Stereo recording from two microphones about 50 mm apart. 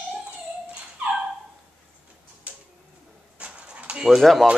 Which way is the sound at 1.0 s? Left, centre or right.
Right.